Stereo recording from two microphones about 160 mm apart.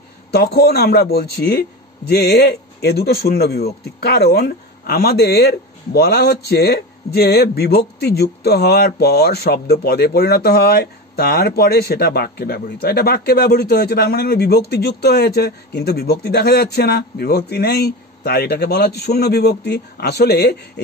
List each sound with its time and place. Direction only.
0.3 s speech: 80° left